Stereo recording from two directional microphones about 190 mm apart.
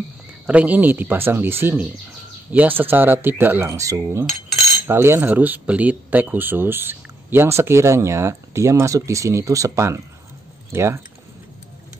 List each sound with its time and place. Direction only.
0.5 s speech: 10° right (ahead or behind)